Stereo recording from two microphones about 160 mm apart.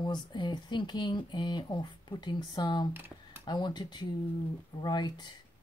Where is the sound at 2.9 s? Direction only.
15° right (ahead or behind).